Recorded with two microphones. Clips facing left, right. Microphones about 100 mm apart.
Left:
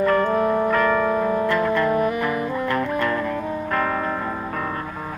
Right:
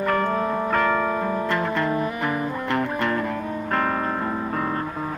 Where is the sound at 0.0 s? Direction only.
30° right (ahead or behind).